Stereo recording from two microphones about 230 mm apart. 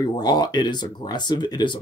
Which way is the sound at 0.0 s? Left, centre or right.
Centre.